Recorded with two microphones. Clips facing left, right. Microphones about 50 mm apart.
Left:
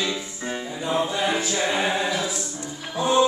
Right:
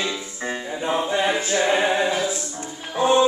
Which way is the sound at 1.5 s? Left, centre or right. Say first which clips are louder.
Right 4 dB; right.